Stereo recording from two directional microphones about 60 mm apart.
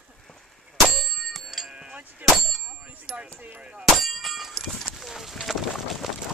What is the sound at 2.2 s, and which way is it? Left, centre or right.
Clang, right.